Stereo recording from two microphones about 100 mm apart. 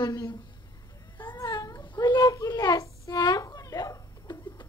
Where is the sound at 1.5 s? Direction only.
40° left (ahead or behind).